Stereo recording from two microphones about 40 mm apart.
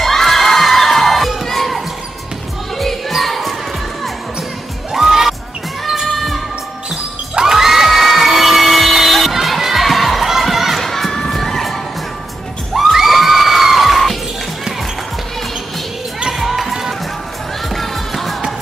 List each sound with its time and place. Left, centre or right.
0.0 s children shouting: centre
1.4 s a sound: centre
2.8 s music: centre
4.9 s music: centre
6.1 s music: centre
7.3 s crowd: centre
10.8 s children shouting: centre
12.7 s screaming: centre
16.3 s basketball bounce: centre
17.6 s music: centre